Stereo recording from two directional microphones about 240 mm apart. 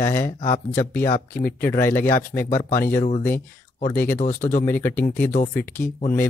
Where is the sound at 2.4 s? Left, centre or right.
Left.